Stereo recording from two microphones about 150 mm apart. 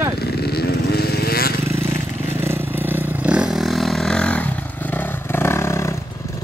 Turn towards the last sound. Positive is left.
turn(degrees=20)  # may be behind; listen again after turning